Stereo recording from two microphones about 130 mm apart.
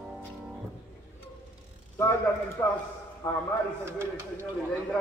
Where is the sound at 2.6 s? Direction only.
20° left (ahead or behind).